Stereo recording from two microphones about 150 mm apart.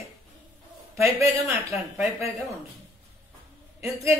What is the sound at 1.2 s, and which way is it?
Speech, 20° right (ahead or behind).